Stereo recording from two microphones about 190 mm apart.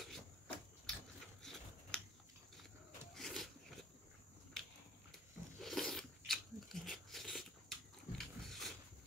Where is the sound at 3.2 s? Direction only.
Centre (ahead or behind).